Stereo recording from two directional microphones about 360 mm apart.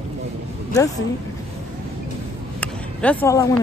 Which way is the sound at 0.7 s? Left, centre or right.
Centre.